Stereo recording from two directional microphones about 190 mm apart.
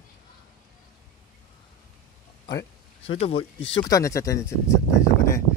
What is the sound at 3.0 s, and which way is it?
Speech, 30° left (ahead or behind).